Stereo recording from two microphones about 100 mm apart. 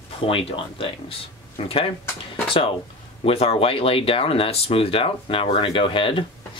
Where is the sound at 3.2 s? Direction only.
75° left (ahead or behind); by 6.2 s 60° left (ahead or behind).